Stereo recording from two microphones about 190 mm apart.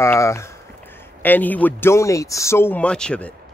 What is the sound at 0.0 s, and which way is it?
Speech, 15° left (ahead or behind).